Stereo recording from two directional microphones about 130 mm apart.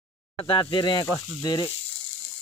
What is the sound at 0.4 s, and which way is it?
Speech, 40° left (ahead or behind).